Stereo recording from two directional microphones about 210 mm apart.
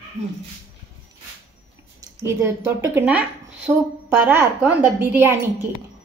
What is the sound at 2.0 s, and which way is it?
A woman's voice, 15° right (ahead or behind).